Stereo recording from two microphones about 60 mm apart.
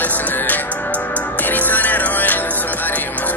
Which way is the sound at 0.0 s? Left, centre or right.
Left.